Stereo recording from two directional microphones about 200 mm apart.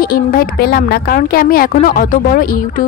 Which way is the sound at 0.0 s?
45° left (ahead or behind).